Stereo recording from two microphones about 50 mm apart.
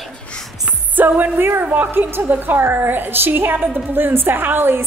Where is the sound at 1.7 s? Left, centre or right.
Right.